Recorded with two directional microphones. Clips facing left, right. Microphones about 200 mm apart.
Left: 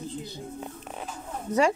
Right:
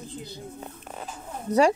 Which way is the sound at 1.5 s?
35° right (ahead or behind).